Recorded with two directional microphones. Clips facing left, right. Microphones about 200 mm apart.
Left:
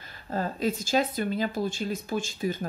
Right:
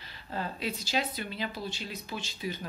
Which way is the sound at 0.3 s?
45° left (ahead or behind).